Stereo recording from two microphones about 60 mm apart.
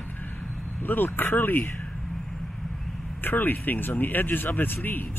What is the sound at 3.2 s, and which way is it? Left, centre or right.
Speech, left.